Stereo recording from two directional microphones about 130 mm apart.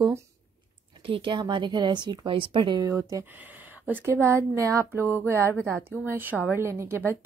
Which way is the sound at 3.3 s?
15° right (ahead or behind).